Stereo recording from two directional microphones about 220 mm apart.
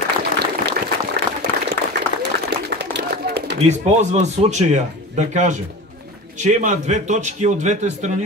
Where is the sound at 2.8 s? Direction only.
50° right (ahead or behind).